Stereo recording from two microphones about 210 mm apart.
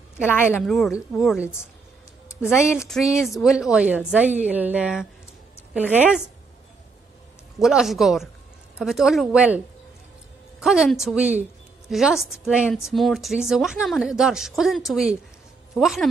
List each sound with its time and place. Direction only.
0.2 s a woman's voice: 10° left (ahead or behind)
2.5 s a woman's voice: 10° left (ahead or behind)
3.3 s a woman's voice: centre (ahead or behind)
7.5 s a woman's voice: centre (ahead or behind)
10.6 s a woman's voice: centre (ahead or behind)